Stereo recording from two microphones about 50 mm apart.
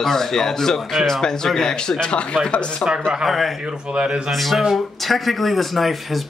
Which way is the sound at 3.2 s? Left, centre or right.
Centre.